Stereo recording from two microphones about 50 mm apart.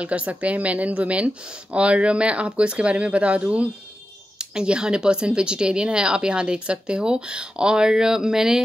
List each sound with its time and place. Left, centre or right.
0.0 s speech: right